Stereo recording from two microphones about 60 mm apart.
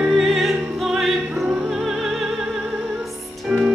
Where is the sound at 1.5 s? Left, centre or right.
Centre.